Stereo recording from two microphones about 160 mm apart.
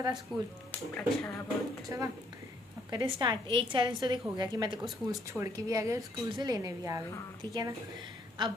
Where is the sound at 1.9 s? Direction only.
20° right (ahead or behind).